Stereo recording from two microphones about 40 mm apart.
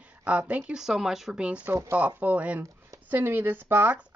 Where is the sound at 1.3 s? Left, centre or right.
Right.